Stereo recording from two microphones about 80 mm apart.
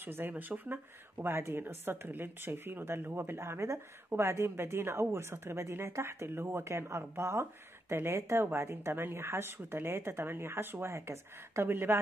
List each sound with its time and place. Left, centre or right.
0.0 s a woman's voice: right